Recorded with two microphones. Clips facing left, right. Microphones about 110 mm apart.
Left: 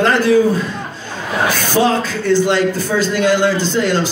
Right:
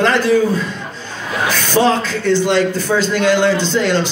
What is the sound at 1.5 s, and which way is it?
A man's voice, 45° left (ahead or behind).